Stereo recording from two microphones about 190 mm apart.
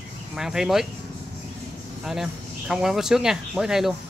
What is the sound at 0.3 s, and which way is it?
Speech, 5° right (ahead or behind).